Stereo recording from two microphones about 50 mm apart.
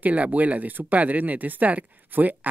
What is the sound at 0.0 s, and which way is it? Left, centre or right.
Speech, right.